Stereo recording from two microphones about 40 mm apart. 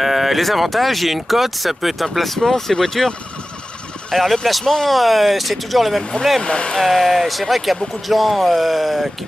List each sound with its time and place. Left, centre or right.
0.0 s speech: centre
4.1 s speech: centre
6.4 s speech: left
6.7 s speech: centre